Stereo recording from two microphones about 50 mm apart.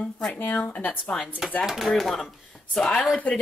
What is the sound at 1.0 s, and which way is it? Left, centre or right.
Speech, centre.